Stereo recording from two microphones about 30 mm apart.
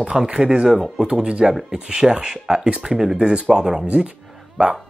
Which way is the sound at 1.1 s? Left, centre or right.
Right.